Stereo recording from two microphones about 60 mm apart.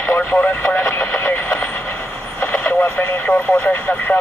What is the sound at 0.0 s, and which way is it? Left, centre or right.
Speech, left.